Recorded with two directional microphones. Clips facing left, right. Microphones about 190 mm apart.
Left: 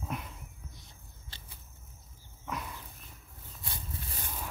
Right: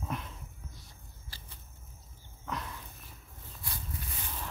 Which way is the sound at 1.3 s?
25° left (ahead or behind).